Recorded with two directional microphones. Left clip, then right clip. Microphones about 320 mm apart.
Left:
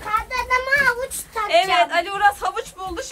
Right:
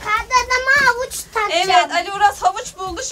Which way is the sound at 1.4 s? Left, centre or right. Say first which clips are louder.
Right 2 dB; centre.